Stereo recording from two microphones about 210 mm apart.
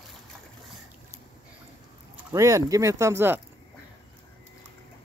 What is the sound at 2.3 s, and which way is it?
Speech, 15° right (ahead or behind).